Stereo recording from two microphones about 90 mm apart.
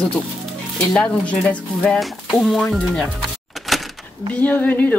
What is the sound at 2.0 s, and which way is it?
Speech, centre (ahead or behind).